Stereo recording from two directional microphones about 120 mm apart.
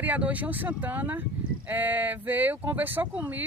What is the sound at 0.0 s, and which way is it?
Speech, 10° right (ahead or behind).